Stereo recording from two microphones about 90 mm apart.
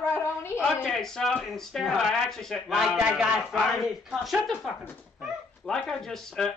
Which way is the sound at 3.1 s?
10° right (ahead or behind).